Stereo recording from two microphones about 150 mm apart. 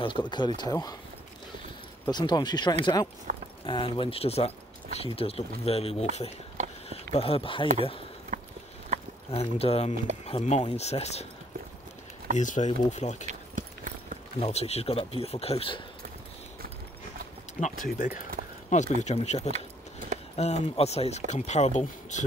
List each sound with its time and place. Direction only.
0.0 s speech: 30° left (ahead or behind)
2.0 s speech: 30° left (ahead or behind)
3.3 s a sound: 60° right (ahead or behind)
3.6 s speech: 35° left (ahead or behind)
8.3 s a sound: 55° right (ahead or behind)
9.3 s speech: 40° left (ahead or behind)
12.4 s speech: 55° left (ahead or behind)
13.2 s clip-clop: 55° right (ahead or behind)
14.4 s speech: 45° left (ahead or behind)
17.6 s speech: 50° left (ahead or behind)
17.8 s speech: 70° left (ahead or behind)
18.7 s speech: 50° left (ahead or behind)